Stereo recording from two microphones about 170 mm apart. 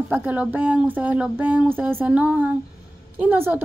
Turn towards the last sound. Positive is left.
turn(degrees=-10)  # may be behind; listen again after turning